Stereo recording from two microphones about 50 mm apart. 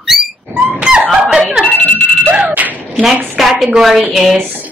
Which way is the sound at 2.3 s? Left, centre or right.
Right.